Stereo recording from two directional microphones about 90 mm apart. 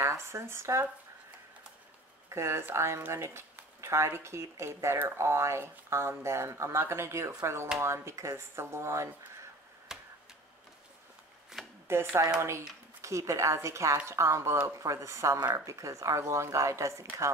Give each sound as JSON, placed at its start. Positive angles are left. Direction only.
{"t": 0.0, "sound": "speech", "side_deg": -30}
{"t": 2.2, "sound": "speech", "side_deg": -30}
{"t": 9.9, "sound": "chop", "side_deg": -5}
{"t": 11.6, "sound": "chopping", "side_deg": -5}
{"t": 11.9, "sound": "speech", "side_deg": -30}